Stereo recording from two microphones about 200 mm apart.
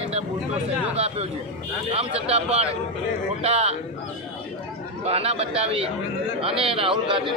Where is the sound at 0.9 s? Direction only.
30° right (ahead or behind).